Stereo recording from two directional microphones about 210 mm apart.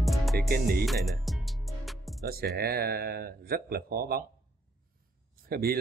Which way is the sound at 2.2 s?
45° right (ahead or behind).